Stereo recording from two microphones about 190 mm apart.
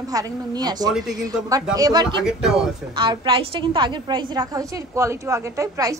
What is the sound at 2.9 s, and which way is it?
A woman's voice, 25° right (ahead or behind).